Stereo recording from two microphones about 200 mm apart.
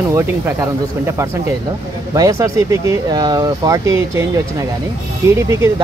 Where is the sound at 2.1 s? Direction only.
15° right (ahead or behind).